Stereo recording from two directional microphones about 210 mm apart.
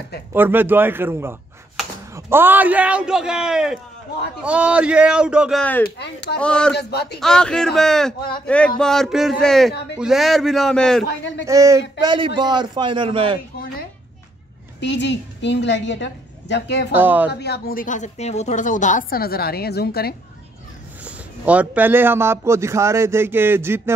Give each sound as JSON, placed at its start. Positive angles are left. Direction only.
{"t": 0.3, "sound": "a man's voice", "side_deg": -10}
{"t": 6.7, "sound": "speech", "side_deg": 50}
{"t": 7.2, "sound": "a man's voice", "side_deg": 5}
{"t": 11.1, "sound": "a woman's voice", "side_deg": 55}
{"t": 11.4, "sound": "a man's voice", "side_deg": -15}
{"t": 14.8, "sound": "a woman's voice", "side_deg": 55}
{"t": 16.9, "sound": "a man's voice", "side_deg": -10}
{"t": 17.3, "sound": "speech", "side_deg": 50}
{"t": 21.0, "sound": "a man's voice", "side_deg": -5}